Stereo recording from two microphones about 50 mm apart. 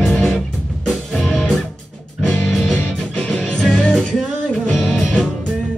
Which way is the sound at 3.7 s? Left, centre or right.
Centre.